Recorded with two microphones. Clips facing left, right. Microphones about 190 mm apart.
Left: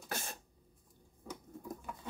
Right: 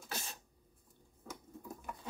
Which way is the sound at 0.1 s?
55° left (ahead or behind).